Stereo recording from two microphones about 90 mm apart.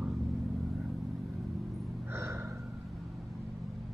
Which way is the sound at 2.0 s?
30° right (ahead or behind).